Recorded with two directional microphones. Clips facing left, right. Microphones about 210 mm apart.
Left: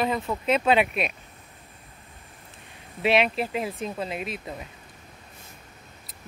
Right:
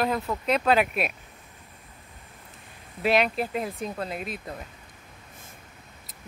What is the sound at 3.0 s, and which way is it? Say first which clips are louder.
Speech: left 1 dB; centre (ahead or behind).